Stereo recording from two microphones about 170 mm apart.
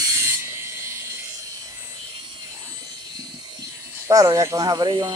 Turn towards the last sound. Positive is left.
turn(degrees=-25)  # may be behind; listen again after turning